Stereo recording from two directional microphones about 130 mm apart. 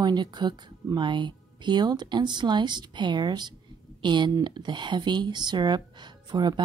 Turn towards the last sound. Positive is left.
turn(degrees=-35)  # may be behind; listen again after turning